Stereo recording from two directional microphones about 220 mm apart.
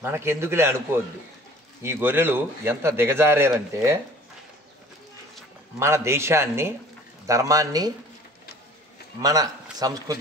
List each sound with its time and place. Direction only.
0.0 s a man's voice: 10° right (ahead or behind)
5.8 s a man's voice: 10° right (ahead or behind)
9.2 s a man's voice: 15° right (ahead or behind)